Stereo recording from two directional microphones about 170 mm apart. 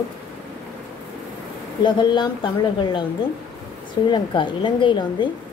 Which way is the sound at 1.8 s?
25° left (ahead or behind).